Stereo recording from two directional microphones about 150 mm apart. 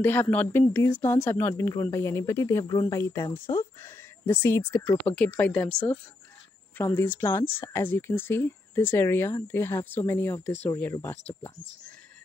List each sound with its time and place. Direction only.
0.0 s speech: 10° left (ahead or behind)
6.8 s speech: 15° left (ahead or behind)